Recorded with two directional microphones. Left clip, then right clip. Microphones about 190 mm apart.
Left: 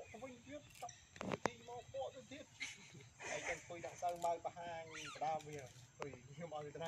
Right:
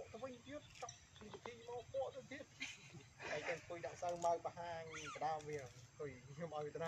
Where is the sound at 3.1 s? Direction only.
10° left (ahead or behind).